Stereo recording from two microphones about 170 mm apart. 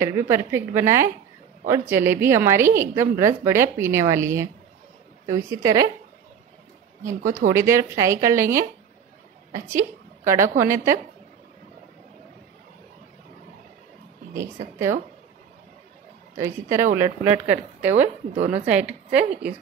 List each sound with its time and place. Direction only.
0.0 s a woman's voice: 15° right (ahead or behind)
7.5 s a woman's voice: 15° right (ahead or behind)
14.3 s a woman's voice: 15° right (ahead or behind)
16.3 s a woman's voice: 15° right (ahead or behind)
18.3 s a woman's voice: 45° right (ahead or behind)
18.7 s a woman's voice: 10° right (ahead or behind)